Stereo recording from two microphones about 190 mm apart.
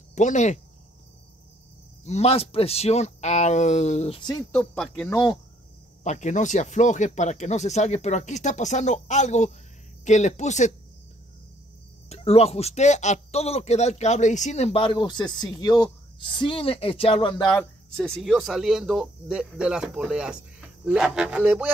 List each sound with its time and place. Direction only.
0.1 s speech: 40° left (ahead or behind)
2.0 s speech: 35° left (ahead or behind)
4.5 s speech: 5° left (ahead or behind)
5.1 s speech: 20° left (ahead or behind)
6.0 s speech: 40° left (ahead or behind)
12.1 s speech: 30° left (ahead or behind)
17.5 s speech: 5° left (ahead or behind)